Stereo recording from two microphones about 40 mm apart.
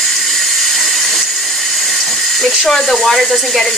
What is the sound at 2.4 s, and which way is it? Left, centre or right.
Speech, centre.